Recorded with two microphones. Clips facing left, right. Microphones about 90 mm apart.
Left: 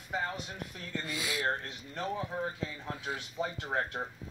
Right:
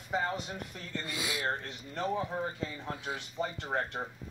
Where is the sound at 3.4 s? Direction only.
Centre (ahead or behind).